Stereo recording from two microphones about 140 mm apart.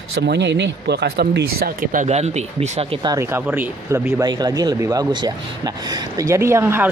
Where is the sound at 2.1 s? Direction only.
50° right (ahead or behind).